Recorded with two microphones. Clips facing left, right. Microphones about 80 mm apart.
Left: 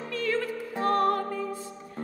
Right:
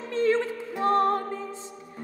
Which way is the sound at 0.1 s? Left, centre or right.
Right.